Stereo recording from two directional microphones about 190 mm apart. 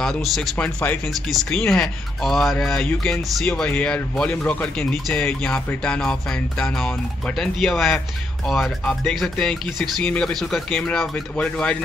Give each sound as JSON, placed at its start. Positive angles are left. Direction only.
{"t": 0.0, "sound": "speech", "side_deg": 0}